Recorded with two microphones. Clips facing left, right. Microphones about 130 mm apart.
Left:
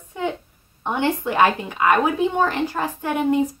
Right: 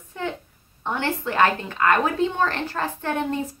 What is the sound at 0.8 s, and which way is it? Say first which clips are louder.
Speech: left 4 dB; 15° left (ahead or behind).